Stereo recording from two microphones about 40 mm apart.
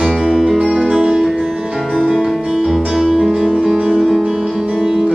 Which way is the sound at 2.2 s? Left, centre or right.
Centre.